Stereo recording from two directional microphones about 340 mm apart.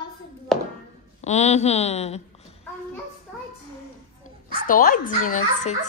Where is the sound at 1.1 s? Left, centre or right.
Centre.